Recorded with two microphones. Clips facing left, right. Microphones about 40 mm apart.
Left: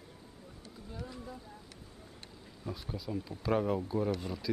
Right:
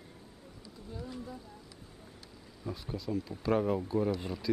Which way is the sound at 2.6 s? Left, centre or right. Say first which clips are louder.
Right 3 dB; centre.